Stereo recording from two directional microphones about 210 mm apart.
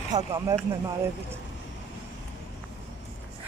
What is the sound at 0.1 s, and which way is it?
Speech, 15° right (ahead or behind).